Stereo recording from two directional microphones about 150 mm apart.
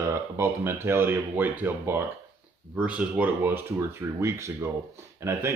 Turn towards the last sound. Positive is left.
turn(degrees=-20)  # may be behind; listen again after turning